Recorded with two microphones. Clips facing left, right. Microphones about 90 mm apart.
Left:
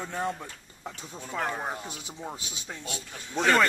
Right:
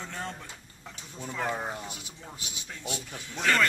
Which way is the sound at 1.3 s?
Centre (ahead or behind).